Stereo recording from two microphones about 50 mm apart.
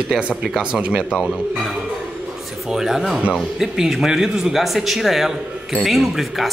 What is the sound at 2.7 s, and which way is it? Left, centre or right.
A man's voice, centre.